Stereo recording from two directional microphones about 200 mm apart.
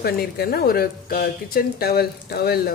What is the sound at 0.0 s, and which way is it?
Speech, 50° left (ahead or behind).